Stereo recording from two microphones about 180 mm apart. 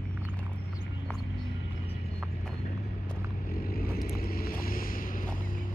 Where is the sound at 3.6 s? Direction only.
55° left (ahead or behind).